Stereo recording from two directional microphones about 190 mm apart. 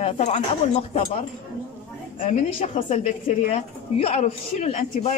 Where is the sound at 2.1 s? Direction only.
40° left (ahead or behind).